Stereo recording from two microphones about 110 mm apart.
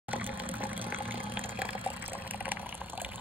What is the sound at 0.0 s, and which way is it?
Water, 15° right (ahead or behind).